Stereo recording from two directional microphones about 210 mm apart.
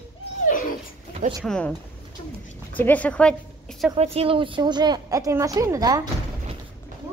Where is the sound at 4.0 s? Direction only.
25° right (ahead or behind).